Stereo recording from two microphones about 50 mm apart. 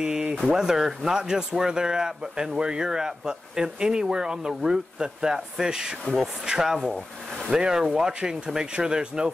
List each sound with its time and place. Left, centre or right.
0.0 s speech: centre